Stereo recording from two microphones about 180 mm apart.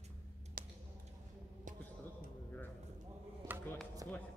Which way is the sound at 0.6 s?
50° right (ahead or behind).